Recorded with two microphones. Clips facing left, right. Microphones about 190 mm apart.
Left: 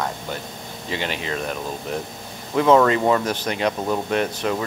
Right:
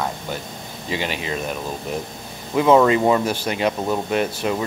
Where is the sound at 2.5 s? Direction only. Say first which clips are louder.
Right 1 dB; 10° right (ahead or behind).